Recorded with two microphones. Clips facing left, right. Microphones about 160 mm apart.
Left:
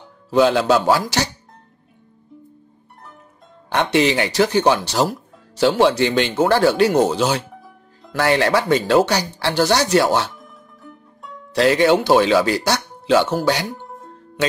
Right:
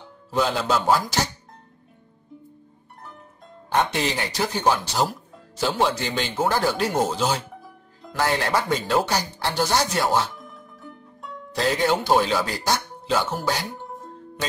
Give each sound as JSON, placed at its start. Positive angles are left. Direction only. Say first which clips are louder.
{"t": 0.3, "sound": "speech", "louder": "left 8 dB", "side_deg": 80}
{"t": 3.7, "sound": "speech", "louder": "left 6 dB", "side_deg": 75}
{"t": 10.4, "sound": "music", "louder": "even", "side_deg": 0}
{"t": 11.5, "sound": "speech", "louder": "left 7 dB", "side_deg": 75}
{"t": 13.7, "sound": "music", "louder": "even", "side_deg": 0}
{"t": 14.4, "sound": "music", "louder": "left 9 dB", "side_deg": 70}